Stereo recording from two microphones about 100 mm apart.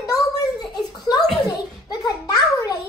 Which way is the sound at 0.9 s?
40° left (ahead or behind).